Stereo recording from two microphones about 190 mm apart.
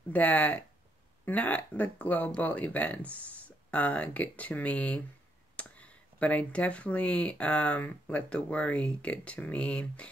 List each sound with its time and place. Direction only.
0.1 s speech: 10° left (ahead or behind)